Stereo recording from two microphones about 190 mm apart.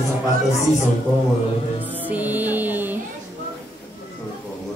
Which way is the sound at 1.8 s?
10° right (ahead or behind).